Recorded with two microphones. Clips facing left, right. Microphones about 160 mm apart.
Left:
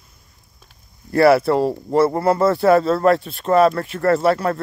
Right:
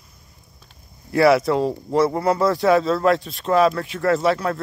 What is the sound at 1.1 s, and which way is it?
Speech, centre (ahead or behind).